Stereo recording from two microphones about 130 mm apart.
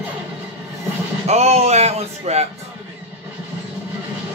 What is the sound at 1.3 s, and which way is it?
Speech, 55° right (ahead or behind).